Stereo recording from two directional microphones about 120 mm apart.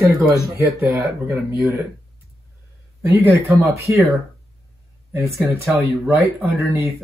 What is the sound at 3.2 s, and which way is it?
Speech, 25° right (ahead or behind).